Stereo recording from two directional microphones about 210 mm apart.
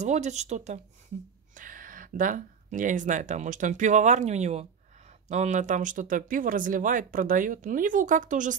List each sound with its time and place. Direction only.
0.0 s speech: 35° right (ahead or behind)